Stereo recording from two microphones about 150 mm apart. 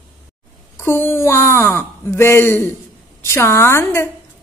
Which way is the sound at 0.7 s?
15° left (ahead or behind).